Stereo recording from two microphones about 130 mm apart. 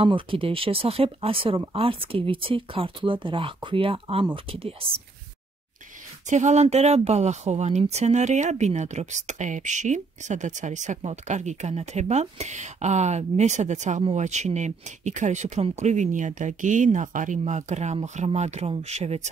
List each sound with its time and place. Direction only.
0.0 s speech: 40° right (ahead or behind)
6.2 s speech: 65° right (ahead or behind)